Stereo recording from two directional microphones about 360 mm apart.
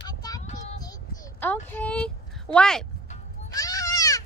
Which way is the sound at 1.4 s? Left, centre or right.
Centre.